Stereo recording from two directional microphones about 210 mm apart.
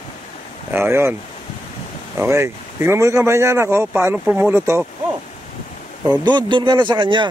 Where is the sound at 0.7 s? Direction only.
10° right (ahead or behind).